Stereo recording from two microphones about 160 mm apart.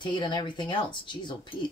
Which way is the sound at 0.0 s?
30° left (ahead or behind).